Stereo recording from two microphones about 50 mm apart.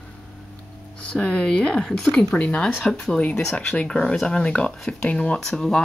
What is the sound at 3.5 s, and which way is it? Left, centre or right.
Speech, left.